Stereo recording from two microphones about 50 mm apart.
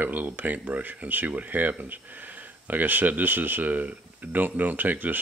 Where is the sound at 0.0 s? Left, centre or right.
Right.